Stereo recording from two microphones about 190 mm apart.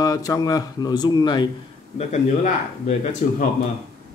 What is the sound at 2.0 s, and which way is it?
Speech, 35° left (ahead or behind).